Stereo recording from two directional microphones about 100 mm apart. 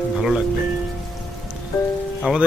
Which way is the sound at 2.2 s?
10° right (ahead or behind).